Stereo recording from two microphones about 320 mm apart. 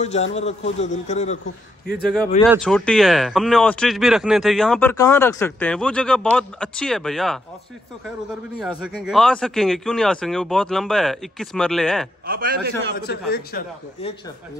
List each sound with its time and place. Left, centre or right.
0.0 s a man's voice: left
2.5 s speech: centre
9.0 s speech: centre
12.3 s a man's voice: right
13.3 s a man's voice: left